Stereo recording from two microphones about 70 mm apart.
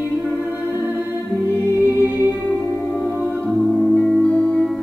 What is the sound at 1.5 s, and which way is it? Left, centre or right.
Music, right.